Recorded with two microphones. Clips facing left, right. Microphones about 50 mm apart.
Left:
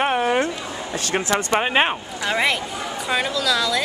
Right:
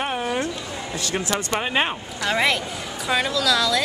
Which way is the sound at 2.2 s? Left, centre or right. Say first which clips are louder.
Even; centre.